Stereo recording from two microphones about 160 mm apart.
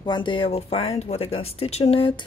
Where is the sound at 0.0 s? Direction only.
30° left (ahead or behind).